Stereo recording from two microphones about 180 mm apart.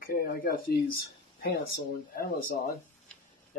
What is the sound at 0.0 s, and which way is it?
Speech, 55° left (ahead or behind).